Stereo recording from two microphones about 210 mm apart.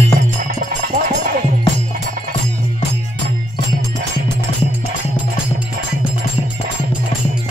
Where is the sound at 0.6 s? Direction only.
35° right (ahead or behind).